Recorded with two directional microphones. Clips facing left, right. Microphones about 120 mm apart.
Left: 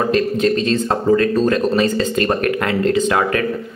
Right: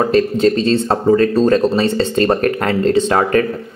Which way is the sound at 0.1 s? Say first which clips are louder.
Right 3 dB; 30° right (ahead or behind).